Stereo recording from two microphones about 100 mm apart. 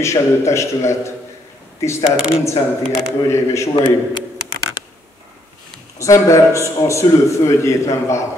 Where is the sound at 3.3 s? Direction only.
30° left (ahead or behind).